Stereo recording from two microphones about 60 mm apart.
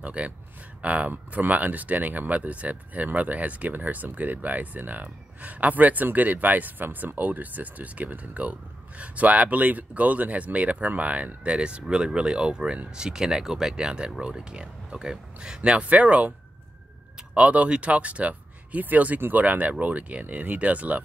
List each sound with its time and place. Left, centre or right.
0.0 s speech: right